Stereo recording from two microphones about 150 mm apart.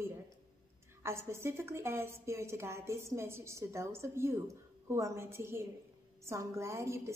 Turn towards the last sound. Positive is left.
turn(degrees=-20)  # may be behind; listen again after turning